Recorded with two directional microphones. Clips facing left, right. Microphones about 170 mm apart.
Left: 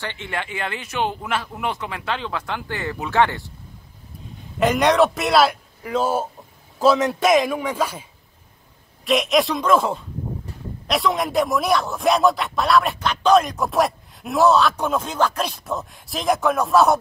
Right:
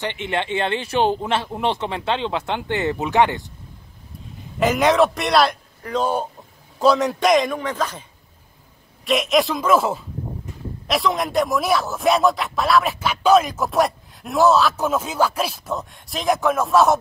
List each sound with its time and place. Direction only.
0.0 s speech: 20° right (ahead or behind)
4.6 s speech: centre (ahead or behind)